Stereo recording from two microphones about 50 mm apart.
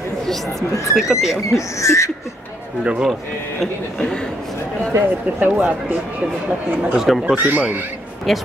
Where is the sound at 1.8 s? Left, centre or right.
Left.